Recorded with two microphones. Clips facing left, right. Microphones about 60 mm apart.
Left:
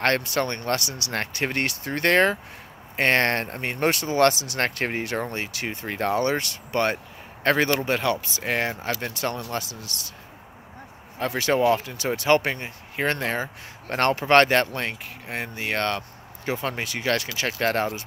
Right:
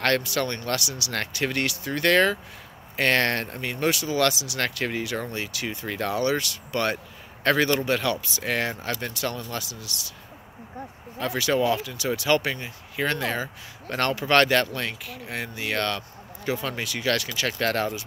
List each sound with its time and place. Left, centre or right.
0.0 s speech: left
11.1 s speech: left